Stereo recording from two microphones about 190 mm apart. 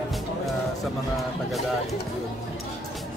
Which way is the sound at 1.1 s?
Centre (ahead or behind).